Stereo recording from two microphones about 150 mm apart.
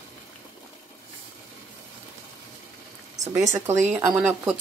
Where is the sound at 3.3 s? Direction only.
20° right (ahead or behind).